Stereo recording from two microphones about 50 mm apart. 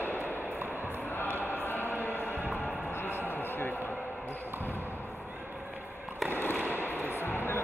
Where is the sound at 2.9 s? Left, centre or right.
Left.